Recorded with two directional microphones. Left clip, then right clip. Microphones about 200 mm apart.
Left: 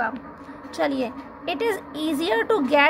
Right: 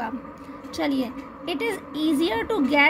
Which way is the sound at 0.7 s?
Centre (ahead or behind).